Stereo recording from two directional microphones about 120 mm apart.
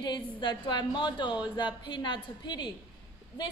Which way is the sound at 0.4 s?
40° left (ahead or behind).